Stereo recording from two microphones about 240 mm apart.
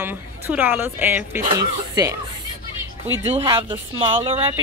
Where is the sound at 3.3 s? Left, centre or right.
Centre.